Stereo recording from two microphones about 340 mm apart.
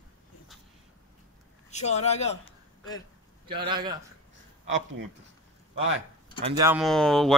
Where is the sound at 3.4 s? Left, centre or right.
Centre.